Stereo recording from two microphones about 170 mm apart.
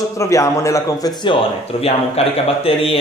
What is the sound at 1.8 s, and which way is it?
A man's voice, 35° left (ahead or behind).